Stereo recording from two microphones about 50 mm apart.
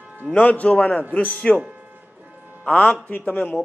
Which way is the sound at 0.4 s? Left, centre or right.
Left.